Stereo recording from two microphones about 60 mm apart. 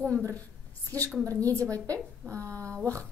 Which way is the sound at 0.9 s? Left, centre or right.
Right.